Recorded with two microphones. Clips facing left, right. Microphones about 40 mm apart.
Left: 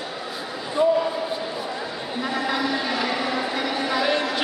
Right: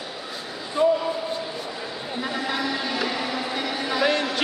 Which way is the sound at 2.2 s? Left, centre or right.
Centre.